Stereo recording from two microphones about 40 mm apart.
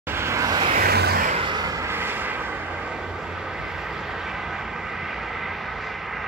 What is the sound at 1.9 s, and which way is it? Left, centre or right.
Vehicle, right.